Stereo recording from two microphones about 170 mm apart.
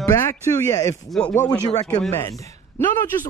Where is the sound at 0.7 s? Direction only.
20° left (ahead or behind).